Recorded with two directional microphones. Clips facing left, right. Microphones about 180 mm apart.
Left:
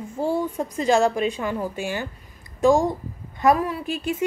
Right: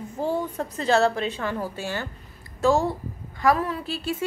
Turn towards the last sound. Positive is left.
turn(degrees=15)  # may be behind; listen again after turning